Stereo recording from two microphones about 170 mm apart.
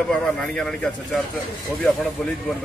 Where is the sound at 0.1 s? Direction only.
5° left (ahead or behind).